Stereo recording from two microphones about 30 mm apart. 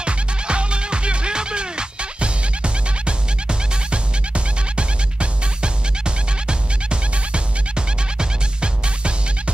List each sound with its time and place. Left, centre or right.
0.0 s music: right